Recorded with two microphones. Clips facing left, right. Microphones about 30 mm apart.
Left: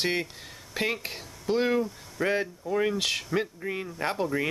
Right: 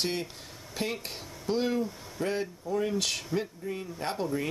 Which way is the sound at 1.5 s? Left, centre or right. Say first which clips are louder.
Left 4 dB; left.